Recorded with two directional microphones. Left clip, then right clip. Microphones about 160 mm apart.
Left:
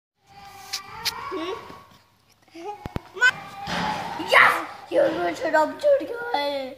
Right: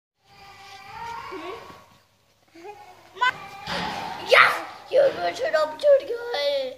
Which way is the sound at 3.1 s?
10° right (ahead or behind).